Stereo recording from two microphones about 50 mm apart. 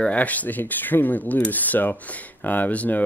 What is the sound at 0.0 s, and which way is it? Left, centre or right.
Speech, left.